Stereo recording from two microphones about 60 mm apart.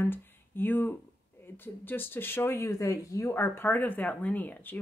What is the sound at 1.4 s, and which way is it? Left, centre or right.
Speech, left.